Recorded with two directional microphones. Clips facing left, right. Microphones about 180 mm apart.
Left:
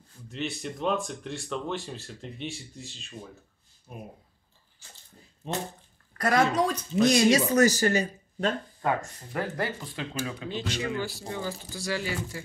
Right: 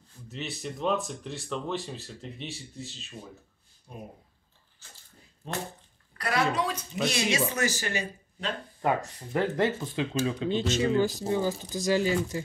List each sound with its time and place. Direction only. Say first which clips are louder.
0.3 s speech: left 3 dB; centre (ahead or behind)
4.8 s speech: left 2 dB; 15° left (ahead or behind)
6.1 s a woman's voice: left 4 dB; 45° left (ahead or behind)
9.3 s speech: right 5 dB; 25° right (ahead or behind)